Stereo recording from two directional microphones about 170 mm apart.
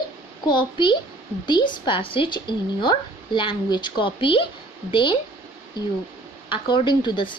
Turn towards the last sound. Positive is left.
turn(degrees=30)  # may be behind; listen again after turning